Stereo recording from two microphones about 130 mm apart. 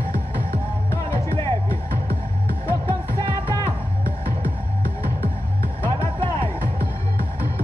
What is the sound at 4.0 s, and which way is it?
Music, 90° right.